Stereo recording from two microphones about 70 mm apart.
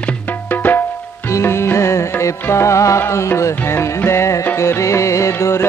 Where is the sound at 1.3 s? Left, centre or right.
Left.